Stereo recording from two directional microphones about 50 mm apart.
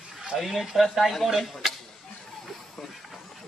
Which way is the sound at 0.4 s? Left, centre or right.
Centre.